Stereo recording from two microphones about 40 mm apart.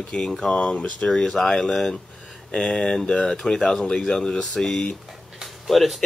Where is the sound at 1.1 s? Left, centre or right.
Centre.